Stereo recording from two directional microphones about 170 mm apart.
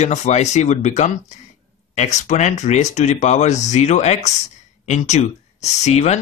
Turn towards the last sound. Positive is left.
turn(degrees=40)  # may be behind; listen again after turning